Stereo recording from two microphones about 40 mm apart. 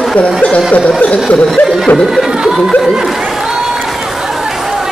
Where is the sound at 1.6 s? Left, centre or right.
Left.